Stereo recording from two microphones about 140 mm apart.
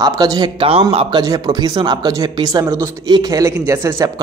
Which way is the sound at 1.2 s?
30° right (ahead or behind).